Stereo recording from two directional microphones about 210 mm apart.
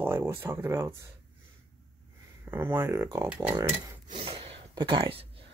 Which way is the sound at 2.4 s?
10° right (ahead or behind).